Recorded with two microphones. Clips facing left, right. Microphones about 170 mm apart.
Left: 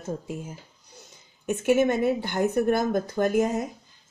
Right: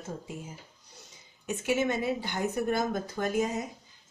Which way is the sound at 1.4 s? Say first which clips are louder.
Left 7 dB; 50° left (ahead or behind).